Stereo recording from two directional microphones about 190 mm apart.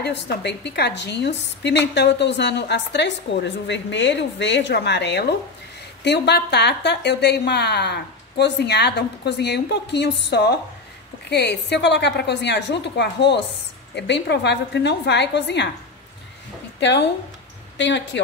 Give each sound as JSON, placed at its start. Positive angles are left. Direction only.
{"t": 0.0, "sound": "a woman's voice", "side_deg": 60}
{"t": 16.8, "sound": "a woman's voice", "side_deg": 65}